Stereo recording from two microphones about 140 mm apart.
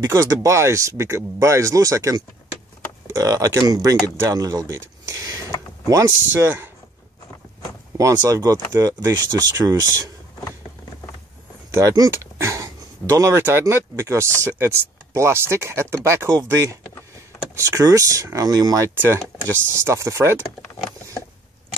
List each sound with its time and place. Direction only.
0.0 s speech: 25° right (ahead or behind)
8.0 s speech: 20° right (ahead or behind)
11.7 s speech: 25° right (ahead or behind)
17.6 s speech: 25° right (ahead or behind)
19.1 s speech: 15° left (ahead or behind)
19.7 s speech: 20° right (ahead or behind)